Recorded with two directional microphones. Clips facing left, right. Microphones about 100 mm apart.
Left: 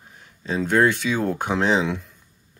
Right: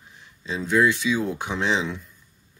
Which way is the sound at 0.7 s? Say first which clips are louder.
Left 1 dB; 50° left (ahead or behind).